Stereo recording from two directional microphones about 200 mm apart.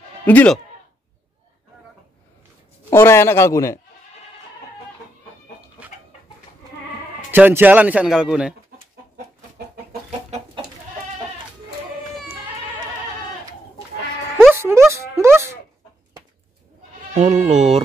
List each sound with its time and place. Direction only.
0.2 s speech: 10° left (ahead or behind)
2.9 s a man's voice: 10° left (ahead or behind)
7.2 s speech: 10° right (ahead or behind)
14.5 s music: 15° right (ahead or behind)
17.1 s speech: 35° right (ahead or behind)
17.5 s music: 35° right (ahead or behind)